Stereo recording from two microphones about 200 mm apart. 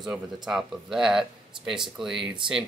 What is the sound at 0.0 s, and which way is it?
Speech, centre (ahead or behind).